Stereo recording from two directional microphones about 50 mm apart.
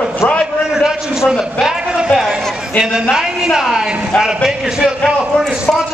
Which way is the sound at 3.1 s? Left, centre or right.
Centre.